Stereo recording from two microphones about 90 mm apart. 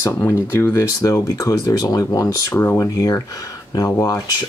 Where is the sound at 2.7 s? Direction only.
40° left (ahead or behind).